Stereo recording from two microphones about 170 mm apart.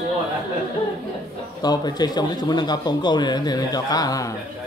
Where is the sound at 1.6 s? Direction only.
25° left (ahead or behind).